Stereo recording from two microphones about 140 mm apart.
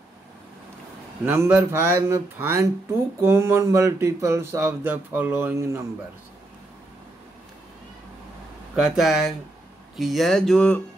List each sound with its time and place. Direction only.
1.2 s speech: 15° right (ahead or behind)
8.7 s speech: 5° right (ahead or behind)